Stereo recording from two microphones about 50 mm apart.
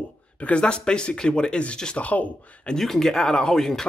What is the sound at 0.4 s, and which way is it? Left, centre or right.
Speech, left.